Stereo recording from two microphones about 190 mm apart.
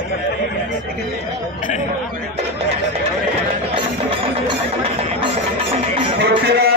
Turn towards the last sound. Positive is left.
turn(degrees=-55)  # may be behind; listen again after turning